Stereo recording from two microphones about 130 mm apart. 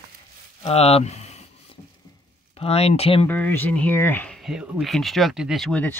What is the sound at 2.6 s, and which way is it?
Speech, 50° left (ahead or behind).